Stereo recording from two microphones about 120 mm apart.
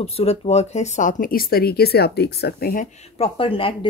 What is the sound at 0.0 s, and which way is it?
Speech, 55° left (ahead or behind).